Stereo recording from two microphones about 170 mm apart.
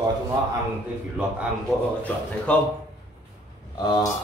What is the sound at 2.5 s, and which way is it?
Speech, 5° left (ahead or behind).